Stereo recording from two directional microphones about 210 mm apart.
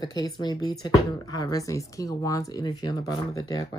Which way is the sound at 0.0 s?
20° left (ahead or behind).